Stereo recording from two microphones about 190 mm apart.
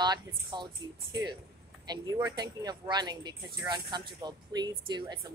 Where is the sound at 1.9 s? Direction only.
20° right (ahead or behind).